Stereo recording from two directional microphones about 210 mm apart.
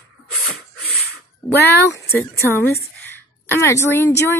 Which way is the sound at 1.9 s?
10° left (ahead or behind).